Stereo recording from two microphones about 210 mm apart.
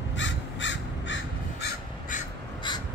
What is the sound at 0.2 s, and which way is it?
Crow, 60° left (ahead or behind).